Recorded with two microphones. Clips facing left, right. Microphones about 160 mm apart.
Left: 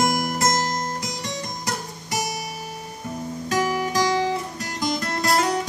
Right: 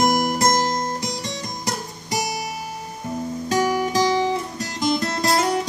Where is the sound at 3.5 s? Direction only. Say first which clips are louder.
Right 3 dB; 35° right (ahead or behind).